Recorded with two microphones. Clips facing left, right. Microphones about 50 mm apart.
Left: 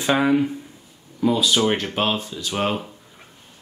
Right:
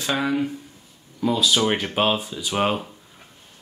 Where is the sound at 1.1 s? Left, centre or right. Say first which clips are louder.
Left 1 dB; centre.